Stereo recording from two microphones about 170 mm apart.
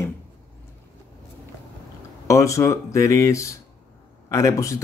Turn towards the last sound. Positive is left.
turn(degrees=20)  # may be behind; listen again after turning